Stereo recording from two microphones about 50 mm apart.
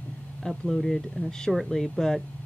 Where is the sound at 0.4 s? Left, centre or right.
Centre.